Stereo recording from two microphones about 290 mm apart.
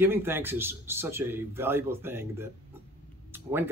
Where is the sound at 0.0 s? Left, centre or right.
Centre.